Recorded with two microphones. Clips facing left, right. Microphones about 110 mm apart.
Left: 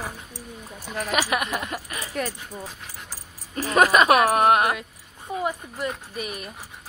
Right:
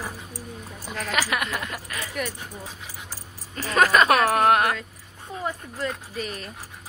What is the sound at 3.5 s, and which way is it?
Speech, 25° left (ahead or behind).